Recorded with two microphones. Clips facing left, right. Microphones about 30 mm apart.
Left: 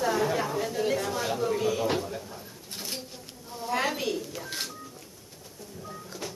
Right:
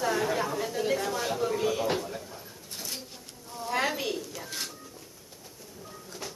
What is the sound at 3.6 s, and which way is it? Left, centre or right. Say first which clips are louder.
Speech: left 1 dB; centre.